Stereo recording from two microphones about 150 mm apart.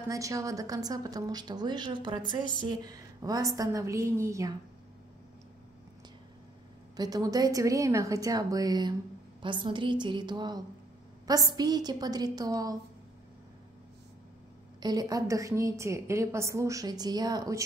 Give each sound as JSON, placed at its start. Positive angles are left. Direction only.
{"t": 0.1, "sound": "a woman's voice", "side_deg": -20}
{"t": 7.0, "sound": "a woman's voice", "side_deg": -25}
{"t": 14.8, "sound": "a woman's voice", "side_deg": -25}